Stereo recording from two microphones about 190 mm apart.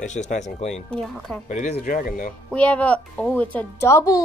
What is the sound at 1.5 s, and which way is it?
Speech, 40° left (ahead or behind).